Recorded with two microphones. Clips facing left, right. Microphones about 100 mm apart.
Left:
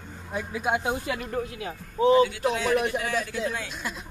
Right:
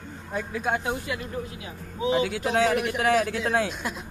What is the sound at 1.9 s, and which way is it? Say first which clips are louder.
Speech: left 6 dB; 45° left (ahead or behind).